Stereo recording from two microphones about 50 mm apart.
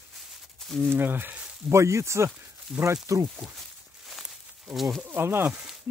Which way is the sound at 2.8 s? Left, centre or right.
Right.